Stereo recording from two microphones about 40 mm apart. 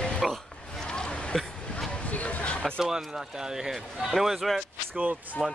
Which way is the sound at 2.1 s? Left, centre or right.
Left.